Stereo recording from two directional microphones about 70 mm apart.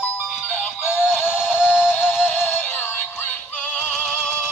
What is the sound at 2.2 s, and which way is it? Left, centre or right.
Music, left.